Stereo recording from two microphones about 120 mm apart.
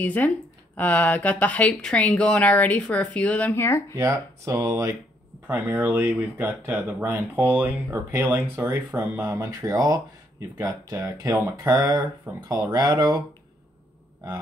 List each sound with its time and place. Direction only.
0.0 s speech: 15° left (ahead or behind)
3.9 s speech: 25° right (ahead or behind)
11.5 s speech: 35° right (ahead or behind)